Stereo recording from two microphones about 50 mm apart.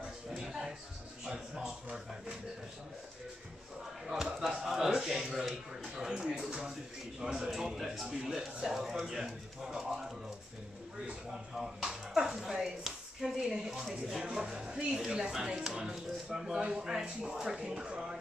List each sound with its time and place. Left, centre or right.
0.4 s music: centre
4.0 s a sound: centre
11.5 s music: centre
12.4 s a sound: centre
14.2 s music: centre
14.8 s speech: centre